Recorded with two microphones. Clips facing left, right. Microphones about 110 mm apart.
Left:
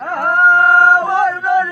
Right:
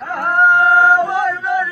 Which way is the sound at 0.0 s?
50° left (ahead or behind).